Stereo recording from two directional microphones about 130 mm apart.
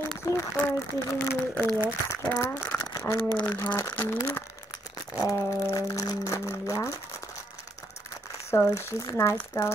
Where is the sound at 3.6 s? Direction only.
15° left (ahead or behind).